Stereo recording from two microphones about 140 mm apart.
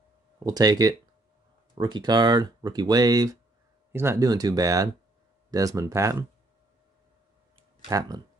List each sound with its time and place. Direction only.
0.4 s speech: 25° right (ahead or behind)